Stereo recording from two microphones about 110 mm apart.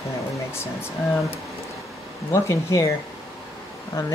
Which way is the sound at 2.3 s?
30° left (ahead or behind).